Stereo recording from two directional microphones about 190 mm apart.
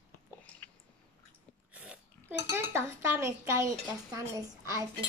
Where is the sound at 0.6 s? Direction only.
10° left (ahead or behind).